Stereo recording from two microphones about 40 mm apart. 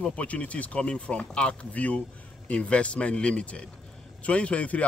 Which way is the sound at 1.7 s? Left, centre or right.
Left.